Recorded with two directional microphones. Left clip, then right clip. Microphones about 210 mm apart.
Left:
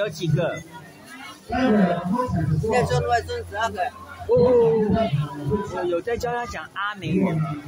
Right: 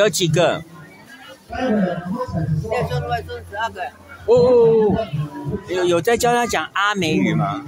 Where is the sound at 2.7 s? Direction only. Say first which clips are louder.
Left 2 dB; centre (ahead or behind).